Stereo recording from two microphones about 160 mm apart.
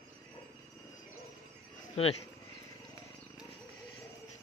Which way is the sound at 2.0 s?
40° left (ahead or behind).